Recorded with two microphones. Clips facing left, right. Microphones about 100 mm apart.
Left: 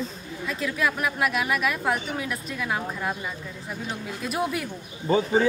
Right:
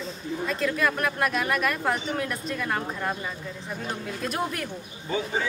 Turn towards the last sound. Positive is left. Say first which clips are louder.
# left 7 dB
turn(degrees=40)  # may be behind; listen again after turning